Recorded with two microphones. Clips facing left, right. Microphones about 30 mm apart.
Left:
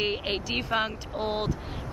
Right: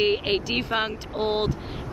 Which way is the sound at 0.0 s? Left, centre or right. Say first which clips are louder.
Right 6 dB; centre.